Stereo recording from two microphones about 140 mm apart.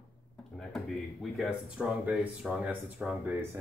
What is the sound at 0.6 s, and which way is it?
Speech, centre (ahead or behind).